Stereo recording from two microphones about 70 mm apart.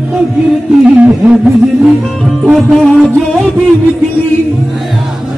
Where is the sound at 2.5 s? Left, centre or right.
Centre.